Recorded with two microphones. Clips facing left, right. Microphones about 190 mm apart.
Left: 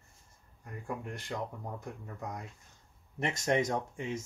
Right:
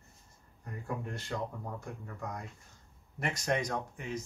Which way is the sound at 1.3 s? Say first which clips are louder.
Right 1 dB; 15° left (ahead or behind).